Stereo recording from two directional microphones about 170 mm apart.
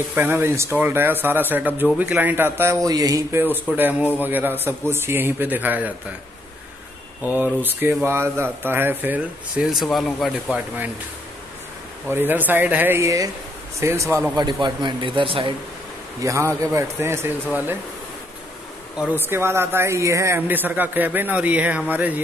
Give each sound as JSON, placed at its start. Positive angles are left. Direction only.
{"t": 0.1, "sound": "speech", "side_deg": -10}
{"t": 7.3, "sound": "speech", "side_deg": -10}
{"t": 12.1, "sound": "speech", "side_deg": -10}
{"t": 14.4, "sound": "speech", "side_deg": -25}
{"t": 16.2, "sound": "speech", "side_deg": -15}
{"t": 18.9, "sound": "speech", "side_deg": -10}